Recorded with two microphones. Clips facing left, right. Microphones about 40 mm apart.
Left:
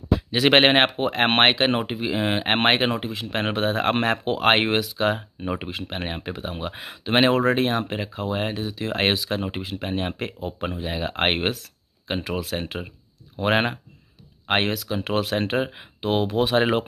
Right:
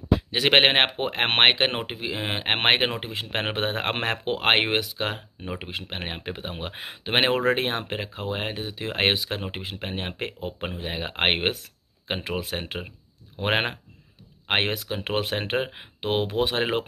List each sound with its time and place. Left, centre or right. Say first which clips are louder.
0.3 s speech: left 3 dB; centre
3.0 s speech: left 2 dB; right
16.3 s speech: left 4 dB; centre